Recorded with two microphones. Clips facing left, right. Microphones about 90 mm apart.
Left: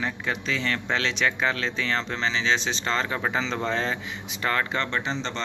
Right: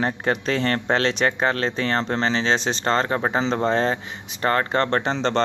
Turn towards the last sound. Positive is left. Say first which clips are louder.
# right 8 dB
turn(degrees=-60)  # may be behind; listen again after turning